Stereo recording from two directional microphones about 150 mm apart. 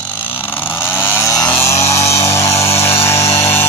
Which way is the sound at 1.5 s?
20° left (ahead or behind).